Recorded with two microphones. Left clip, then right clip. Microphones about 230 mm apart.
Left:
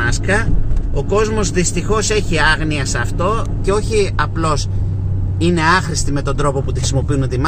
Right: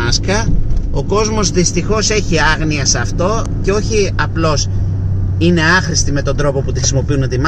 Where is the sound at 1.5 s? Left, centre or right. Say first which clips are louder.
Right 2 dB; centre.